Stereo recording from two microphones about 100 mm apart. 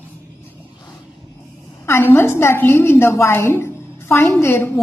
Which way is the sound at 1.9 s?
25° left (ahead or behind).